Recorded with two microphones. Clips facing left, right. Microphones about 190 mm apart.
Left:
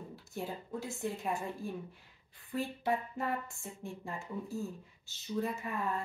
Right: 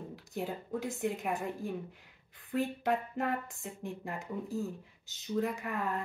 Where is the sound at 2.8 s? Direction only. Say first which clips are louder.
Right 2 dB; 75° right (ahead or behind).